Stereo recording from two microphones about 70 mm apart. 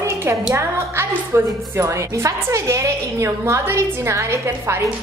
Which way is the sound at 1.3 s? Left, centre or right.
Right.